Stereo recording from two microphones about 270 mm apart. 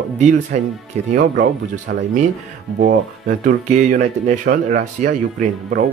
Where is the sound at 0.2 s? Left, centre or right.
Right.